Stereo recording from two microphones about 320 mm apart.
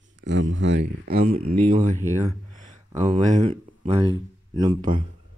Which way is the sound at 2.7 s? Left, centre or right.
Right.